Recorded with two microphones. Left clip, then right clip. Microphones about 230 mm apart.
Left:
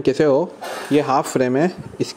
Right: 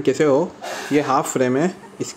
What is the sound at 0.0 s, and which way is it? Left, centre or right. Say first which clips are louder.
Speech: left 1 dB; left.